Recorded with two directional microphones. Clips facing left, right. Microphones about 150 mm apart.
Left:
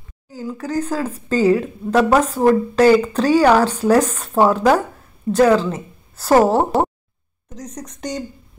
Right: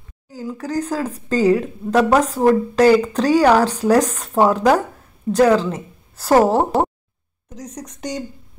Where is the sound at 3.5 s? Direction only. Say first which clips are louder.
Even; 40° right (ahead or behind).